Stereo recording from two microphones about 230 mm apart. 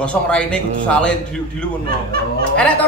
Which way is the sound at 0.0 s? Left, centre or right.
Centre.